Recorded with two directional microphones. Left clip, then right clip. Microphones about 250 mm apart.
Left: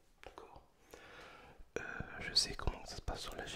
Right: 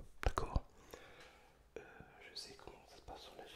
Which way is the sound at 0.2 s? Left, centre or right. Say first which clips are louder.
Right 12 dB; right.